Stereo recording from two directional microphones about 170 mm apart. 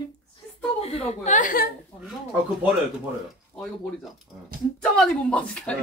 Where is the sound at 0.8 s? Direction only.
35° left (ahead or behind); by 1.7 s 55° left (ahead or behind).